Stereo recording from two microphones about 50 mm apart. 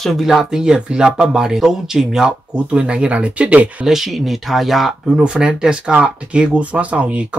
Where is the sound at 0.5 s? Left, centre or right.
Centre.